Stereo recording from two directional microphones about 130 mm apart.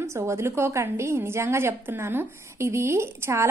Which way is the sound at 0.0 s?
20° right (ahead or behind).